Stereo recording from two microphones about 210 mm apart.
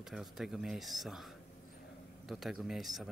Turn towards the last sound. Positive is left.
turn(degrees=0)  # may be behind; listen again after turning